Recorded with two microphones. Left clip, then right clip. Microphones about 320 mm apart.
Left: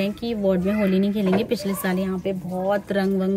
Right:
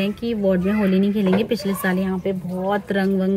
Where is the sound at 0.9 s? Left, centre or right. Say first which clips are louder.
Right 2 dB; left.